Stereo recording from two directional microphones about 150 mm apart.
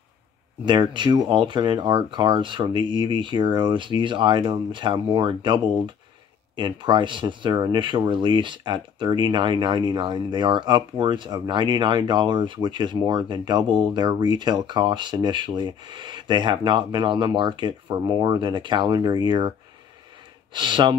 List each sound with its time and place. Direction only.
0.7 s speech: 30° right (ahead or behind)
20.5 s speech: 30° right (ahead or behind)